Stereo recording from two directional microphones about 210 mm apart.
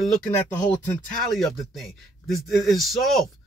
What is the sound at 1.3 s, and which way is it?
A man's voice, centre (ahead or behind).